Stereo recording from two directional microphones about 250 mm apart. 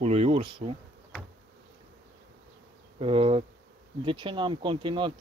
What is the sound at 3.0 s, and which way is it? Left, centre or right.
Speech, right.